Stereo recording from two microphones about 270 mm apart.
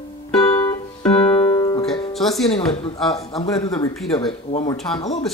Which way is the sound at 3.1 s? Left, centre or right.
Centre.